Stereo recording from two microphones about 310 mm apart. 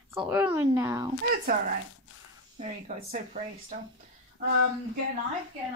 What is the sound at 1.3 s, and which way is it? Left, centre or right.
Speech, right.